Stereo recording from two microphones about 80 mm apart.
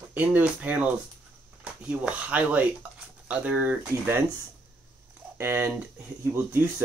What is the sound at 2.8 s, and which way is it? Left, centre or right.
Dishes, centre.